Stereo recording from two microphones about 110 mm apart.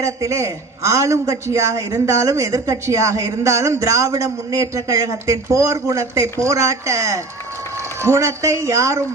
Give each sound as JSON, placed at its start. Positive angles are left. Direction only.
{"t": 0.0, "sound": "a man's voice", "side_deg": -30}